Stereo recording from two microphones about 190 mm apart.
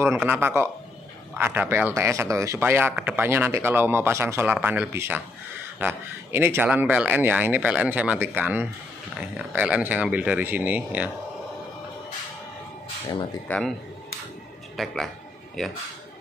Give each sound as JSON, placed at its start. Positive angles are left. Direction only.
{"t": 0.1, "sound": "speech", "side_deg": -10}
{"t": 13.5, "sound": "a man's voice", "side_deg": 5}
{"t": 14.8, "sound": "a man's voice", "side_deg": 0}